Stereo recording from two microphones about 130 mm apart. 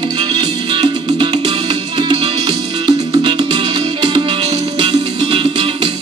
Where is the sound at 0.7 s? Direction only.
40° right (ahead or behind).